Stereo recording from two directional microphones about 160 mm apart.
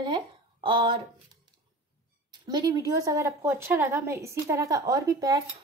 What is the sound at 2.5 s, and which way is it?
A woman's voice, 25° right (ahead or behind).